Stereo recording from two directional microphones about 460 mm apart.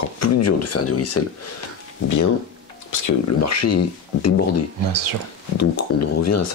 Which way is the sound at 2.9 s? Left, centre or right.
Left.